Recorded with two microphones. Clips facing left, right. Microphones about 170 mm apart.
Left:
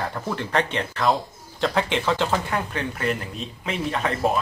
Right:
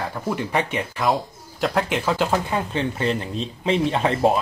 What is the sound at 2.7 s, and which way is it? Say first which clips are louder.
Speech: right 3 dB; 25° right (ahead or behind).